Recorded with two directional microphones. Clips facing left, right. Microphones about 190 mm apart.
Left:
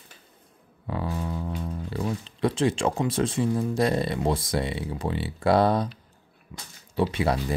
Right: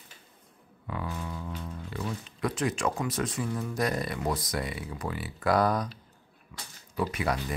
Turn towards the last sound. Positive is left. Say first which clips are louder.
# left 5 dB
turn(degrees=30)  # may be behind; listen again after turning